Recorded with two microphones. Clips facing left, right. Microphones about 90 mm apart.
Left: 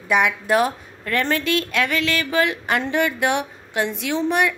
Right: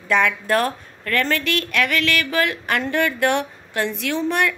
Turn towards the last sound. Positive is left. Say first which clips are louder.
# left 1 dB
turn(degrees=20)  # may be behind; listen again after turning